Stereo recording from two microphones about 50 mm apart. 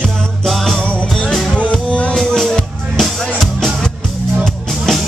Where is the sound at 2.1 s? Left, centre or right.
Centre.